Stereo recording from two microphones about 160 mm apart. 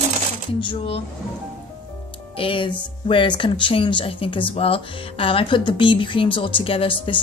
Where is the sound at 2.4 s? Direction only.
35° left (ahead or behind).